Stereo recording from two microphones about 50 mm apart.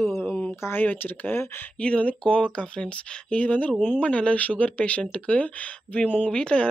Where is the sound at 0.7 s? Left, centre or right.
Left.